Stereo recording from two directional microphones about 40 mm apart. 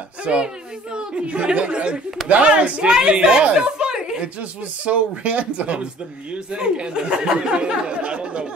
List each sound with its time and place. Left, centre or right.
0.2 s speech: right
4.4 s speech: right